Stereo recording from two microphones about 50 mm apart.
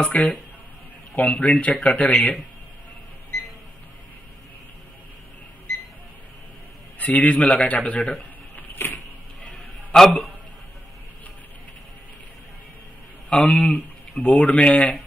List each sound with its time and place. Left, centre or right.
0.0 s speech: left
7.0 s speech: left
8.5 s a sound: left
9.9 s a man's voice: centre
13.4 s speech: left